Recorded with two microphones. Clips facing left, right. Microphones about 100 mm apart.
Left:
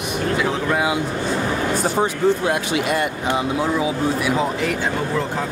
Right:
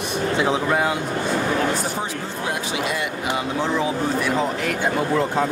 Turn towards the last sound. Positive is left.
turn(degrees=5)  # may be behind; listen again after turning